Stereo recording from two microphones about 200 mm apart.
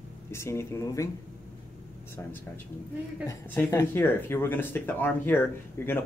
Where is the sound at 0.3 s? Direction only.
15° left (ahead or behind).